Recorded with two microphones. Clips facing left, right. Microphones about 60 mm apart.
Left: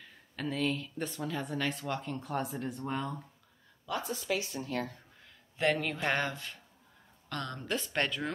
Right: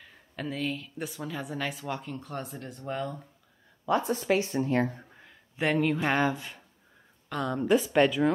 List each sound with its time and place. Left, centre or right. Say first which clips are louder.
0.0 s speech: right 1 dB; centre
3.8 s speech: right 9 dB; right
5.2 s speech: right 1 dB; centre